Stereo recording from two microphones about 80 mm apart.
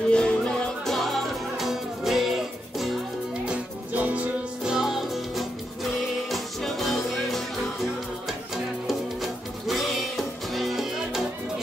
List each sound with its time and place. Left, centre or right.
0.1 s music: centre
3.4 s music: centre
4.6 s music: centre